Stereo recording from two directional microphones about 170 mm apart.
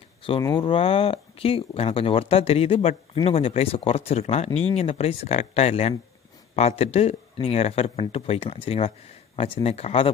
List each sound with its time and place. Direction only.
0.6 s speech: 30° left (ahead or behind)